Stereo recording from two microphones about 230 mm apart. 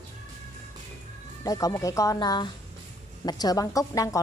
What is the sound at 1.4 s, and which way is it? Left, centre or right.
A woman's voice, centre.